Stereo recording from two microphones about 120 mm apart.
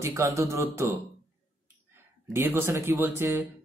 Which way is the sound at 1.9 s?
20° right (ahead or behind).